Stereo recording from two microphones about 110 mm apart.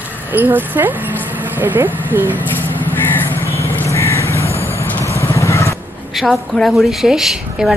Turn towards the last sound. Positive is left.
turn(degrees=-5)  # may be behind; listen again after turning